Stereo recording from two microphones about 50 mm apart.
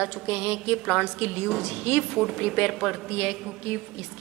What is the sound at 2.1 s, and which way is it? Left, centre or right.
Speech, centre.